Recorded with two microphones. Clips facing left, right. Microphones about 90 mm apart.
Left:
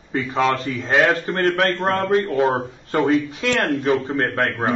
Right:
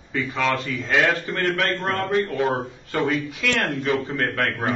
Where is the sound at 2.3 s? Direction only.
35° left (ahead or behind).